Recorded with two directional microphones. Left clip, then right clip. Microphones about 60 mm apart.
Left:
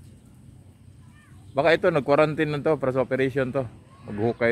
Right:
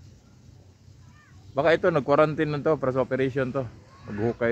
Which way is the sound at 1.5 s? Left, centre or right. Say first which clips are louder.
Left 1 dB; left.